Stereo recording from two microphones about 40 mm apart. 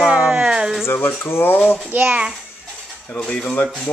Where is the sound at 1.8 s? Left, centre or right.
Right.